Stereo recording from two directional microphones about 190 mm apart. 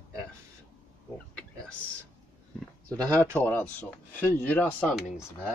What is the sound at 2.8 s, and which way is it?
Speech, 20° right (ahead or behind).